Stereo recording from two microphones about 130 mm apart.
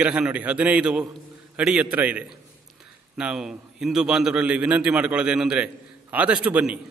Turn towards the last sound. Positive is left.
turn(degrees=-10)  # may be behind; listen again after turning